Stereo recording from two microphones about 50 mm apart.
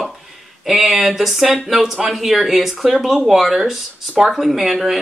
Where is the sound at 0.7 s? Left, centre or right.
Centre.